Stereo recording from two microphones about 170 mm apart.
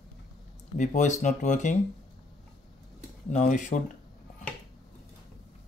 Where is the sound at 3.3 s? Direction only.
45° left (ahead or behind).